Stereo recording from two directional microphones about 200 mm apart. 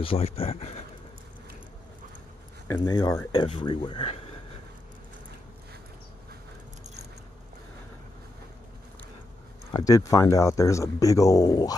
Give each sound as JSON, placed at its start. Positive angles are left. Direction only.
{"t": 0.0, "sound": "speech", "side_deg": 30}
{"t": 2.7, "sound": "speech", "side_deg": 20}
{"t": 9.7, "sound": "speech", "side_deg": 20}